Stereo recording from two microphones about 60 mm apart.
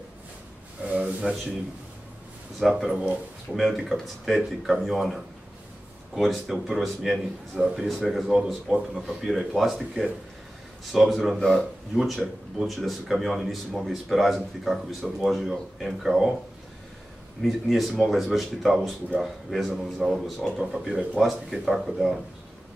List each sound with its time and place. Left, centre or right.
0.8 s a sound: centre
2.6 s speech: centre
11.3 s speech: centre
11.9 s speech: centre
17.4 s speech: centre
20.5 s speech: centre